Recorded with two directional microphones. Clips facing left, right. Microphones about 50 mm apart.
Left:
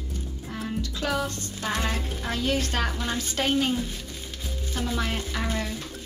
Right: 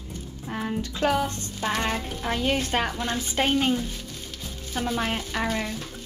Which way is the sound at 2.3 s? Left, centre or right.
Right.